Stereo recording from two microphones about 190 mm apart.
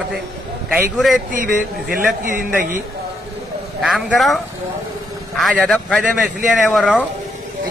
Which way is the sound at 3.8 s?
Centre (ahead or behind).